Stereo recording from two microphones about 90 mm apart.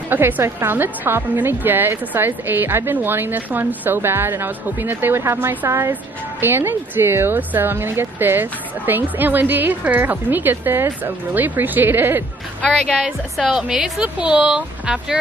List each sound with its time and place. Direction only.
0.1 s a woman's voice: 25° right (ahead or behind)
12.6 s speech: 10° left (ahead or behind)
13.0 s a woman's voice: 5° right (ahead or behind)